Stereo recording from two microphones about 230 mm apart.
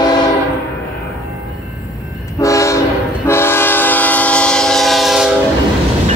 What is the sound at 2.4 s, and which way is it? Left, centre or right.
Train, centre.